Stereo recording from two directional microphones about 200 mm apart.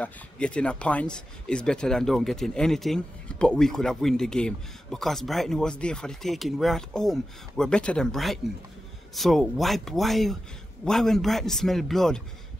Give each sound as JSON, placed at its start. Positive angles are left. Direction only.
{"t": 0.0, "sound": "speech", "side_deg": 5}